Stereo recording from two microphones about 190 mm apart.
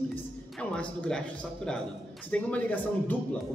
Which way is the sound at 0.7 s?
5° left (ahead or behind).